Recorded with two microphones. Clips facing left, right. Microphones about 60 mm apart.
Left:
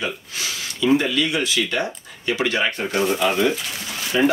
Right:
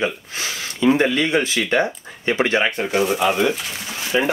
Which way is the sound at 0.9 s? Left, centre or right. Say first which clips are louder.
Right 2 dB; right.